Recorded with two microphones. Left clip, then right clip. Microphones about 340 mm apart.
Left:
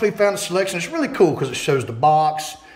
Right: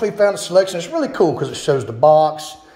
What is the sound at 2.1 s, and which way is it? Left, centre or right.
Speech, centre.